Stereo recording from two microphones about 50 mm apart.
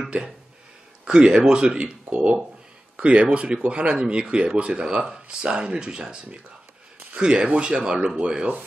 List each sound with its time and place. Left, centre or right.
1.0 s speech: centre